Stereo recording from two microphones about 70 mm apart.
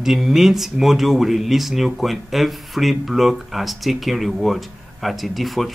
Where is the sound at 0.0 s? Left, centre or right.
Centre.